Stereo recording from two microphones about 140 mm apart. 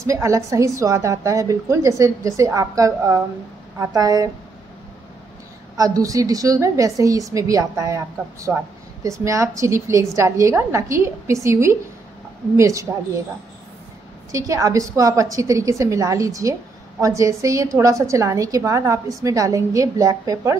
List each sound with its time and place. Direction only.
0.0 s a woman's voice: 20° right (ahead or behind)
5.8 s a woman's voice: 25° right (ahead or behind)
14.3 s a woman's voice: 25° right (ahead or behind)